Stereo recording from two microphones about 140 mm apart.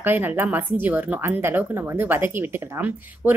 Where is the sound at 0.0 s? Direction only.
15° right (ahead or behind).